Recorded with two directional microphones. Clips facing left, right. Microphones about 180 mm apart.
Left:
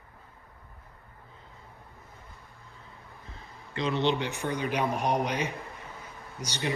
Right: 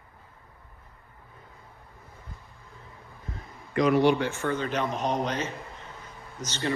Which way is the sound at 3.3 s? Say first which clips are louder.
Right 10 dB; 30° left (ahead or behind).